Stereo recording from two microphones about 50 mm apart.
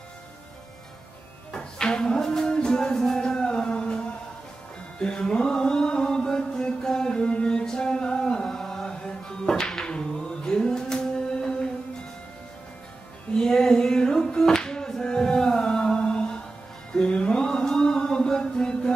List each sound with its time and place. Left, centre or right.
1.5 s music: centre
13.4 s a sound: centre
16.9 s mantra: centre